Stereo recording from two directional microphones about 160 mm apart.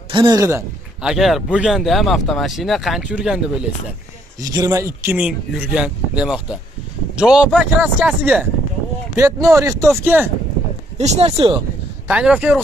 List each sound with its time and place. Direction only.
0.1 s speech: 25° right (ahead or behind)
1.0 s speech: centre (ahead or behind)
4.4 s speech: 20° right (ahead or behind); by 8.5 s 5° right (ahead or behind)
9.1 s speech: 15° right (ahead or behind)
11.0 s speech: 40° right (ahead or behind)
12.1 s speech: 5° right (ahead or behind)